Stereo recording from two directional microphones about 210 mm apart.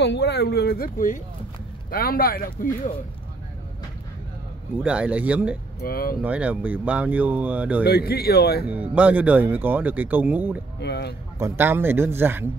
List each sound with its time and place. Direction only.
0.0 s speech: 55° left (ahead or behind)
4.8 s speech: 5° right (ahead or behind)
5.8 s speech: 45° left (ahead or behind)
6.2 s speech: 5° right (ahead or behind)
7.8 s speech: 50° left (ahead or behind)
8.9 s speech: 5° right (ahead or behind)
10.8 s speech: 55° left (ahead or behind)
11.3 s speech: 10° right (ahead or behind)